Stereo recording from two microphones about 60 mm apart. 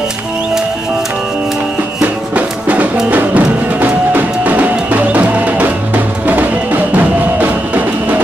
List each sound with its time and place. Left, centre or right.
2.0 s music: right